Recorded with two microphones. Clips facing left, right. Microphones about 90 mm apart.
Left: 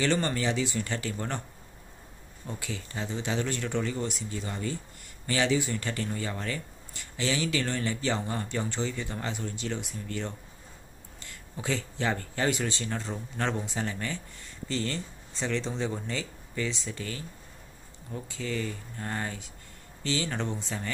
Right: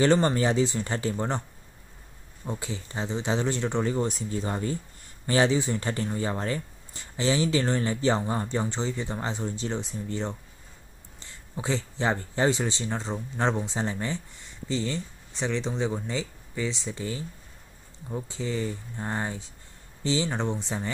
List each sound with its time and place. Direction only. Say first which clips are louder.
0.0 s speech: right 6 dB; 35° right (ahead or behind)
2.4 s speech: right 4 dB; 30° right (ahead or behind)